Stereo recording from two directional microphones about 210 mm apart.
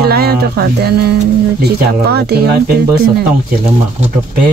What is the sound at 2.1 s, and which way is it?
Speech, 50° right (ahead or behind).